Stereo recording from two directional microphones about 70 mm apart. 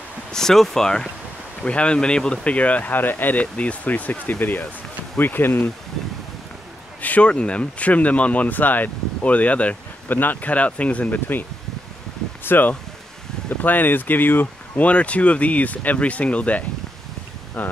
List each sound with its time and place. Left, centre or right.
0.3 s speech: centre; by 5.7 s left
7.0 s speech: left
12.4 s speech: left
14.9 s speech: centre